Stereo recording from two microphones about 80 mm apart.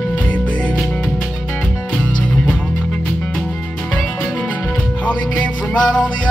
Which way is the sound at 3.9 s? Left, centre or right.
Centre.